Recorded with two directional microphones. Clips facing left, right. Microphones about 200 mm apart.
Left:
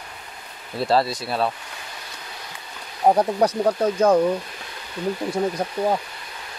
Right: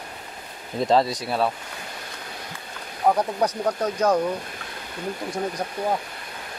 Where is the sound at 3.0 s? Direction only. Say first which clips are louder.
Left 4 dB; 30° left (ahead or behind).